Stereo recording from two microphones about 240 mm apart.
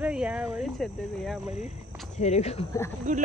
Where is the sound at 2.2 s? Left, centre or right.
Left.